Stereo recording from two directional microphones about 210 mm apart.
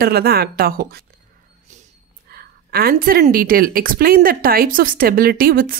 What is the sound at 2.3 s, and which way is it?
A woman's voice, 45° right (ahead or behind).